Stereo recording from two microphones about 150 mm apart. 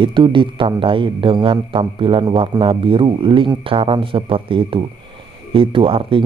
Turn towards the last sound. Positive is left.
turn(degrees=-35)  # may be behind; listen again after turning